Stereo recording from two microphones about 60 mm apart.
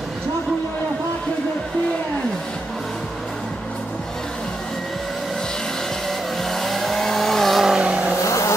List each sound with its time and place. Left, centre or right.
6.4 s vehicle: centre
7.6 s vehicle: centre
8.3 s vehicle: left